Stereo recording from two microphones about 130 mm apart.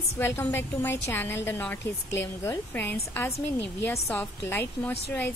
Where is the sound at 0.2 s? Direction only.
15° left (ahead or behind).